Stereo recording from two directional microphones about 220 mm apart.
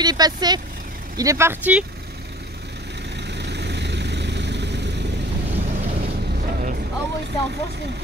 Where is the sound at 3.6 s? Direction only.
50° right (ahead or behind).